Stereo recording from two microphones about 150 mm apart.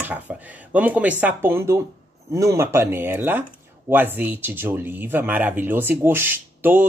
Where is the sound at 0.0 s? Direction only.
10° right (ahead or behind).